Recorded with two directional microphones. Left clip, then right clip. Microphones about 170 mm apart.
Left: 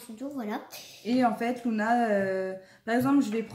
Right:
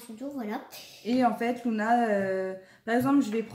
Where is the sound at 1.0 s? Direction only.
5° right (ahead or behind).